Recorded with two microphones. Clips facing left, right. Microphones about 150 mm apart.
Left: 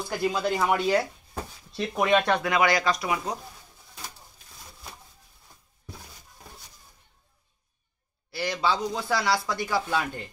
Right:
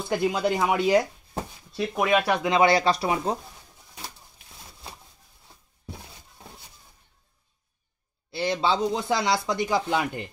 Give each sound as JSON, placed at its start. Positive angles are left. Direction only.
{"t": 0.1, "sound": "speech", "side_deg": -20}
{"t": 1.7, "sound": "speech", "side_deg": 0}
{"t": 2.4, "sound": "speech", "side_deg": -25}
{"t": 8.3, "sound": "speech", "side_deg": -25}